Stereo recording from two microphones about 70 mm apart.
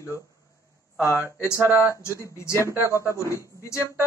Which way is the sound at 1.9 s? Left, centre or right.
Left.